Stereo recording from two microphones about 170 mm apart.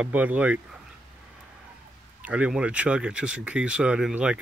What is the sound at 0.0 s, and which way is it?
Speech, 10° right (ahead or behind).